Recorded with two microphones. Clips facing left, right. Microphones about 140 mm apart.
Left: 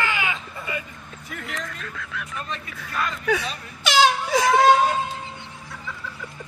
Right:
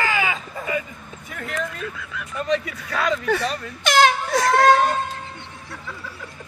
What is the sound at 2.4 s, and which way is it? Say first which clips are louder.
Speech: right 11 dB; 90° right.